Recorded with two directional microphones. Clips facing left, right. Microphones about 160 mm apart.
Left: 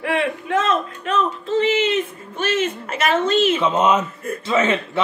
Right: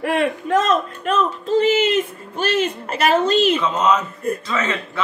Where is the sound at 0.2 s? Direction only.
40° right (ahead or behind).